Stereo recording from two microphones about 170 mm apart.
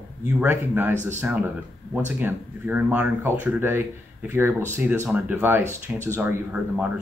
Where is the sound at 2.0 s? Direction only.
10° right (ahead or behind).